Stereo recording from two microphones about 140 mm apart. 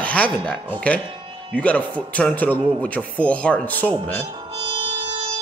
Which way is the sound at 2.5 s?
35° right (ahead or behind).